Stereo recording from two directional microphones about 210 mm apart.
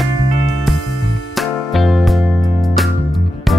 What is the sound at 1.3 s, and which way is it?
Music, centre (ahead or behind).